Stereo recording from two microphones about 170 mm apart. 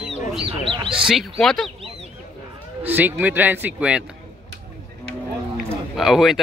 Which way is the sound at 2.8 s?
10° right (ahead or behind).